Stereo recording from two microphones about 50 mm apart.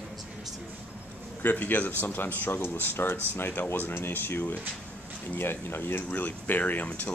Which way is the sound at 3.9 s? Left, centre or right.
Left.